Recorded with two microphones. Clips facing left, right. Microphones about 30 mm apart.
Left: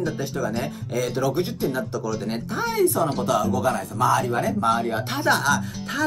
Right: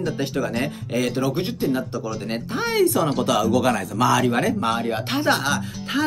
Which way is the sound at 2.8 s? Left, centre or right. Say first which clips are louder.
Right 1 dB; right.